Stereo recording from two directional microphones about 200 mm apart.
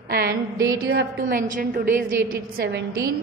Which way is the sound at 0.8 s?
85° right.